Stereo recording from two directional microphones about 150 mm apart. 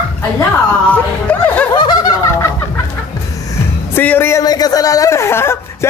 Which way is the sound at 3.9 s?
15° left (ahead or behind).